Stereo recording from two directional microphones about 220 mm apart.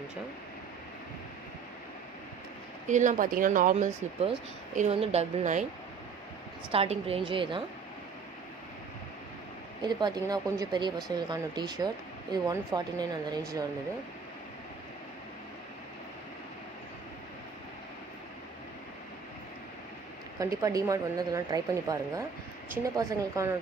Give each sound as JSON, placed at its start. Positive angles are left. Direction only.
{"t": 2.9, "sound": "speech", "side_deg": -35}
{"t": 6.7, "sound": "speech", "side_deg": -25}
{"t": 9.8, "sound": "a woman's voice", "side_deg": -20}
{"t": 20.3, "sound": "a woman's voice", "side_deg": -15}